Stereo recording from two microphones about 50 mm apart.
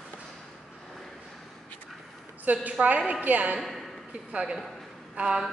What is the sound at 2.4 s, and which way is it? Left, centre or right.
A woman's voice, right.